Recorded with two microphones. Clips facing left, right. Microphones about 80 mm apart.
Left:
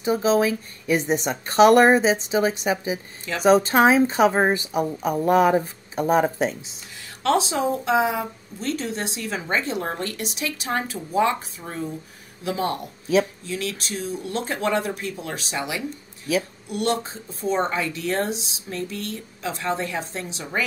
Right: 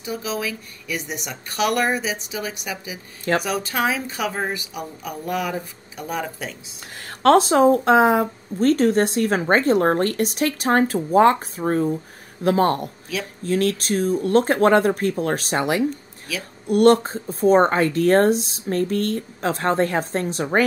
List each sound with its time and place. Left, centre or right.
0.0 s a woman's voice: left
7.0 s speech: right